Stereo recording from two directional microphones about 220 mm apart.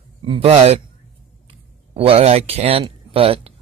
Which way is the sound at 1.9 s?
25° right (ahead or behind).